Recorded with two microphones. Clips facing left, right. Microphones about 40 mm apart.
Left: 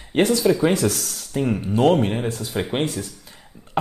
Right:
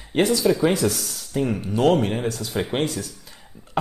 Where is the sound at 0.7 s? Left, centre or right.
Left.